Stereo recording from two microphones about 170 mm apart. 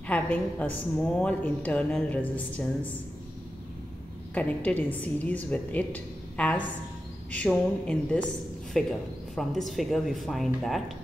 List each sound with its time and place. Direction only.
0.0 s a woman's voice: 10° left (ahead or behind)
4.3 s a woman's voice: 10° left (ahead or behind)